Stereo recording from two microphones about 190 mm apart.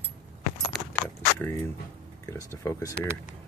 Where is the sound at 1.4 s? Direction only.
10° left (ahead or behind).